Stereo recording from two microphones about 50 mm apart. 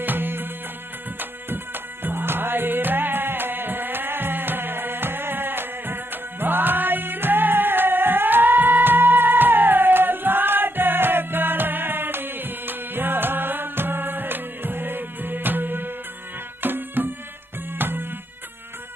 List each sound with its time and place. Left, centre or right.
0.0 s music: right
1.5 s music: right